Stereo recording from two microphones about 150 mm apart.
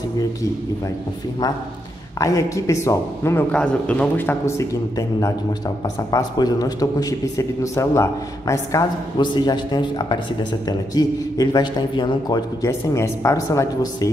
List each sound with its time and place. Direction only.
2.1 s a man's voice: 20° left (ahead or behind)
3.5 s a man's voice: 10° left (ahead or behind)